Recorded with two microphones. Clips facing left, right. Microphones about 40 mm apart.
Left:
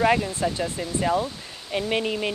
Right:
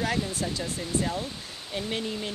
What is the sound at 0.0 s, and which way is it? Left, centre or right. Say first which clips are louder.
Speech: left 7 dB; left.